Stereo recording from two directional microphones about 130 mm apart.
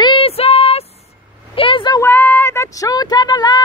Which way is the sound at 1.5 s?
40° left (ahead or behind).